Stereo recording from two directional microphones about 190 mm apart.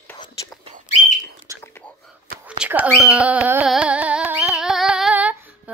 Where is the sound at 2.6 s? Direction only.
10° right (ahead or behind).